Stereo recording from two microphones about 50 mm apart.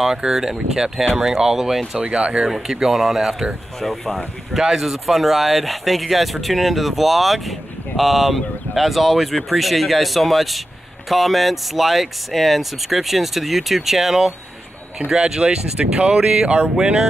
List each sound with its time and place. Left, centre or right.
0.0 s speech: centre
2.0 s speech: centre
3.8 s speech: centre
4.6 s speech: centre